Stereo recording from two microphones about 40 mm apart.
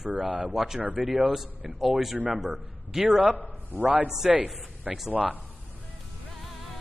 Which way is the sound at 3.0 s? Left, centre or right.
Right.